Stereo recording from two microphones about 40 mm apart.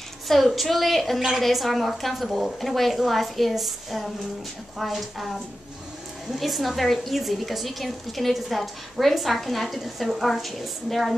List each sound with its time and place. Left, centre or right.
0.3 s a woman's voice: centre